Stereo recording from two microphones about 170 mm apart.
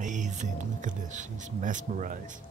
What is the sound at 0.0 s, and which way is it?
Music, 45° right (ahead or behind).